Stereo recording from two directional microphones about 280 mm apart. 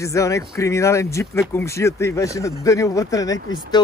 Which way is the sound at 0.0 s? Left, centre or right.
Centre.